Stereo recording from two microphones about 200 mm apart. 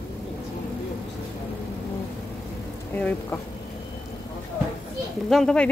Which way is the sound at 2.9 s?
10° left (ahead or behind).